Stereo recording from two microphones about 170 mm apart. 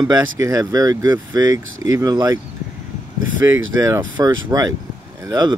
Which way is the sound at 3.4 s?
15° right (ahead or behind).